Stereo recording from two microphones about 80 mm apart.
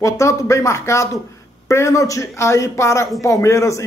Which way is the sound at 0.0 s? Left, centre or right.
Left.